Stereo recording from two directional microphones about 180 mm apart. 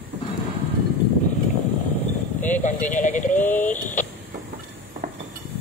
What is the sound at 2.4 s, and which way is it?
Speech, 45° left (ahead or behind).